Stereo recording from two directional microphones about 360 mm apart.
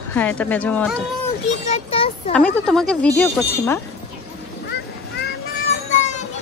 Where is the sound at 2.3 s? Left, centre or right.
Centre.